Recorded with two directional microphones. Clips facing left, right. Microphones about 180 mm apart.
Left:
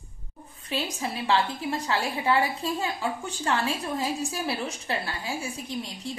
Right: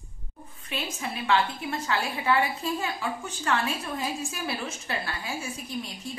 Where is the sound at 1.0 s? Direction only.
30° left (ahead or behind).